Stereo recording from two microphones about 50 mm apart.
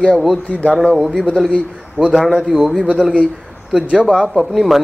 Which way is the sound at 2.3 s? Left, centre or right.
Centre.